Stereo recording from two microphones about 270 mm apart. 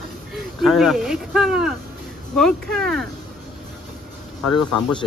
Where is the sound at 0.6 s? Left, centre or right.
Centre.